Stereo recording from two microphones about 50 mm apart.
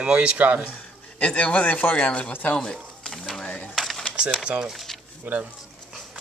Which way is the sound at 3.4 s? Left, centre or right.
Left.